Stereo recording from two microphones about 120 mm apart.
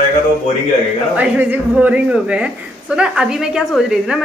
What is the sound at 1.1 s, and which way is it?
A woman's voice, 10° right (ahead or behind).